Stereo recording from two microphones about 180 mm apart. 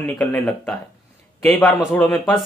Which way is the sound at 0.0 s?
10° left (ahead or behind).